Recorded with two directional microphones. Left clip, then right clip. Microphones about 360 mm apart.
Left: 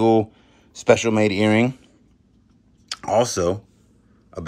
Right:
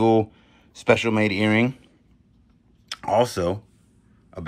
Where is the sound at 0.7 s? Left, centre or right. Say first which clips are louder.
Left 3 dB; centre.